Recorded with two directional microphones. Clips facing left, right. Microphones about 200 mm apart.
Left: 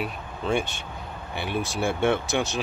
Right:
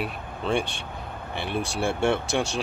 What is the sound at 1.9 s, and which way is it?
Speech, 30° right (ahead or behind).